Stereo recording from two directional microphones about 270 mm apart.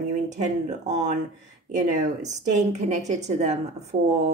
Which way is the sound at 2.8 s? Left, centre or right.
Right.